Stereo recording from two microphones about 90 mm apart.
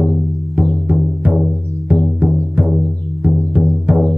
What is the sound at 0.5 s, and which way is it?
Music, 15° right (ahead or behind).